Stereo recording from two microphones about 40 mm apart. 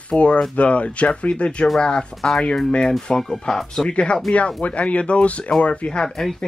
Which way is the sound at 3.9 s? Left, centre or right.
Left.